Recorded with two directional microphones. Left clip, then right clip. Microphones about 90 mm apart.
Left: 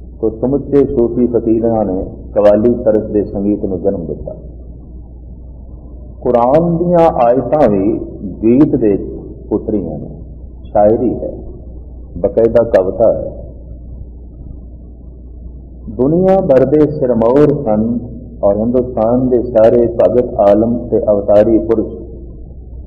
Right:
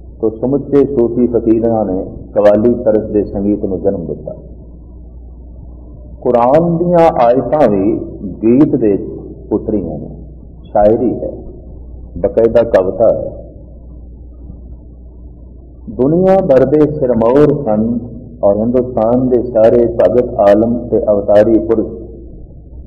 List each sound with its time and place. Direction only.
0.2 s a man's voice: centre (ahead or behind)
3.3 s a man's voice: 15° left (ahead or behind)
3.5 s a man's voice: 5° left (ahead or behind)
6.2 s a man's voice: 10° left (ahead or behind)
7.0 s a man's voice: 10° left (ahead or behind)
12.4 s a man's voice: 15° left (ahead or behind)
12.6 s a man's voice: 5° left (ahead or behind)
16.3 s a man's voice: 10° left (ahead or behind)
17.6 s a man's voice: centre (ahead or behind)